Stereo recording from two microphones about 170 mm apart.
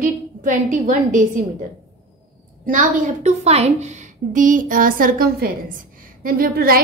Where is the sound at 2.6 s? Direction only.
50° right (ahead or behind).